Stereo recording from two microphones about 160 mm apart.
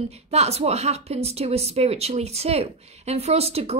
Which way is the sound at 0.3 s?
40° right (ahead or behind).